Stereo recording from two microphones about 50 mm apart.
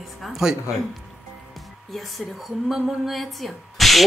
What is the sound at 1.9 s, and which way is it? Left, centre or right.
A woman's voice, centre.